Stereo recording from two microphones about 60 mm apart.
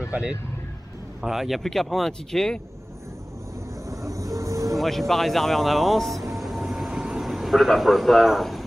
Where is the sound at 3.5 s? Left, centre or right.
Right.